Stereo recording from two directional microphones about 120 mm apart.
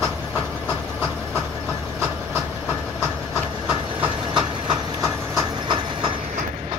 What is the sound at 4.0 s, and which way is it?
Train, 40° right (ahead or behind).